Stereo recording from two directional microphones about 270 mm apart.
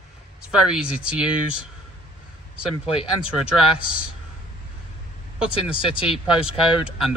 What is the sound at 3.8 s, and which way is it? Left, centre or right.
Speech, left.